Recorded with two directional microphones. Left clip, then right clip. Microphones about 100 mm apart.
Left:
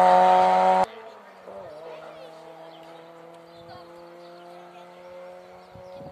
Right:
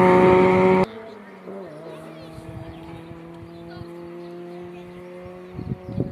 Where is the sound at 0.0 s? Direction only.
30° left (ahead or behind).